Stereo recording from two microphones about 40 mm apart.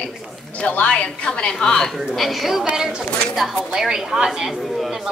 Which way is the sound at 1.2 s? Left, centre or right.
Left.